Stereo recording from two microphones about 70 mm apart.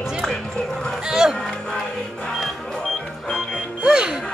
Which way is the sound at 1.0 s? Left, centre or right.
Centre.